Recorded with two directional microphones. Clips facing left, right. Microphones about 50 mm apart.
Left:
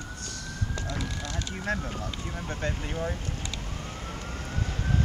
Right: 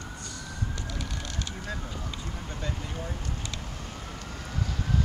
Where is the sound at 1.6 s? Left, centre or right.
Left.